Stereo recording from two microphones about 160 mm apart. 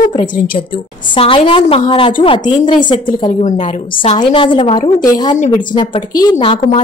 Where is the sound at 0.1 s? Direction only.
30° left (ahead or behind).